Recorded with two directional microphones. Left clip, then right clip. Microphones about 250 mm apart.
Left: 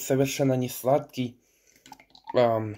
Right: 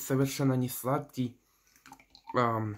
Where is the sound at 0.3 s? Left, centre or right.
Right.